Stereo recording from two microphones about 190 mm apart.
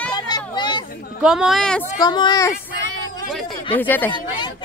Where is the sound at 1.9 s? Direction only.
20° left (ahead or behind).